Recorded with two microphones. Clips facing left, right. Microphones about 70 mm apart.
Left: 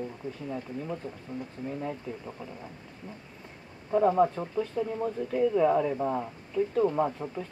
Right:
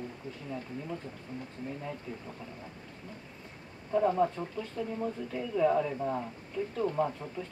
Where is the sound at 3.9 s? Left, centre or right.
Left.